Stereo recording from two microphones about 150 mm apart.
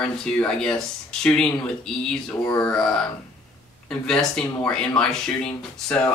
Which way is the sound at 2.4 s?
15° left (ahead or behind).